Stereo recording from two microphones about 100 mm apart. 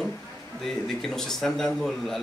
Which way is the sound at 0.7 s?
5° left (ahead or behind).